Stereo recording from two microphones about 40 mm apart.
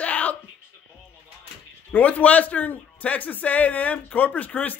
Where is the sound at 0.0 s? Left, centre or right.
Left.